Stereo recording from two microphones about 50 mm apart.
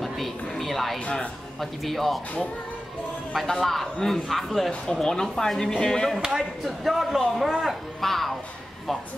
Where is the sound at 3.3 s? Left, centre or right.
Centre.